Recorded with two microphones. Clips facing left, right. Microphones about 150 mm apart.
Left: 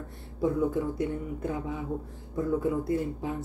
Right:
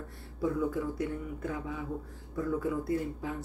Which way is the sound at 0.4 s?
25° left (ahead or behind).